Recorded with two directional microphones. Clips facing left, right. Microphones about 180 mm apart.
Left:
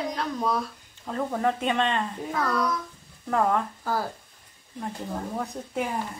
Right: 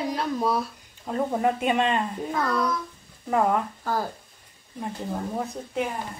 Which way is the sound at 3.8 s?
5° left (ahead or behind).